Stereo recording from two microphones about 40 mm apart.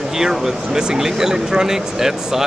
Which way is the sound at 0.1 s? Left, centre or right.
Centre.